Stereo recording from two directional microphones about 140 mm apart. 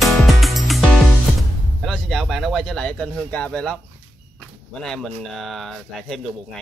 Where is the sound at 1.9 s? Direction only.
Centre (ahead or behind).